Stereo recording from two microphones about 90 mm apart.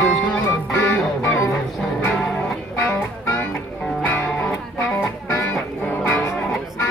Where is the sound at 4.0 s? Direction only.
20° left (ahead or behind).